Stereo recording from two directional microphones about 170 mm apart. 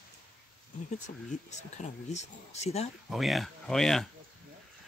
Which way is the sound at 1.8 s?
40° left (ahead or behind).